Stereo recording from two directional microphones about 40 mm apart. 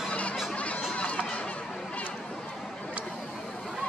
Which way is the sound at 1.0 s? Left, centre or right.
Left.